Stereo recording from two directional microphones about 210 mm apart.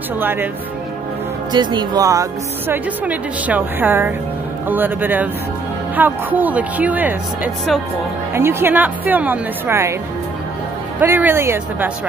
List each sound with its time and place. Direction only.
0.2 s speech: 10° right (ahead or behind)
1.5 s speech: 20° right (ahead or behind)
11.0 s speech: 10° right (ahead or behind)